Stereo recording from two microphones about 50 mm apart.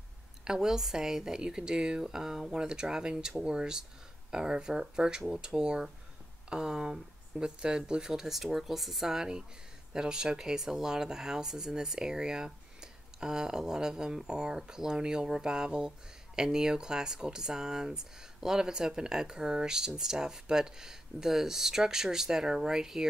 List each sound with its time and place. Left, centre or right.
0.5 s speech: centre